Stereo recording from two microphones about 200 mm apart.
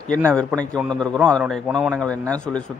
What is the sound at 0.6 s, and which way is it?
Speech, 5° left (ahead or behind).